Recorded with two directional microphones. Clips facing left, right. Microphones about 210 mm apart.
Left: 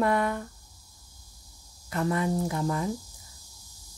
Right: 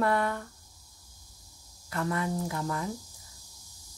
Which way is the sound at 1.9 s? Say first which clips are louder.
Left 4 dB; 20° left (ahead or behind).